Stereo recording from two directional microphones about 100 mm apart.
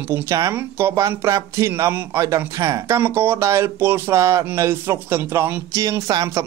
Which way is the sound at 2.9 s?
20° right (ahead or behind).